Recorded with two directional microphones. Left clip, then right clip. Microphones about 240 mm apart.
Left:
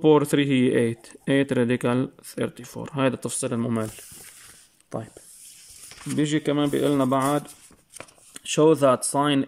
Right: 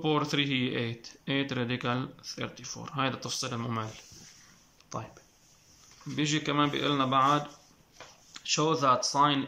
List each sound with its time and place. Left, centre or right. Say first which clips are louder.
0.0 s speech: left 10 dB; left
6.0 s speech: left 6 dB; left